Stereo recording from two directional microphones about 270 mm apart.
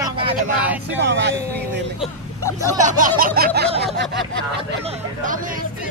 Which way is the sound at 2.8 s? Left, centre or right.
Right.